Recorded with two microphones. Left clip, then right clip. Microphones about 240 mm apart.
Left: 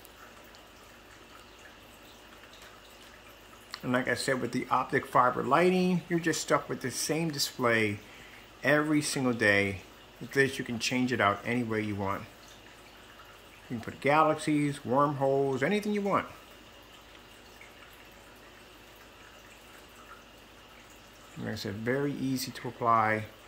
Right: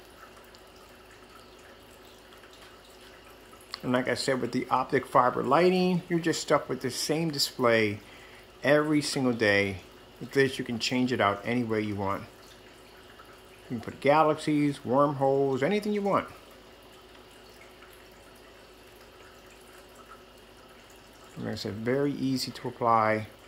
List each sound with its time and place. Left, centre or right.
3.7 s speech: centre
13.7 s speech: centre
21.5 s speech: centre